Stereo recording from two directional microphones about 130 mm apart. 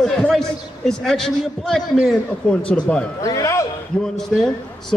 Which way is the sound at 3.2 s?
25° left (ahead or behind).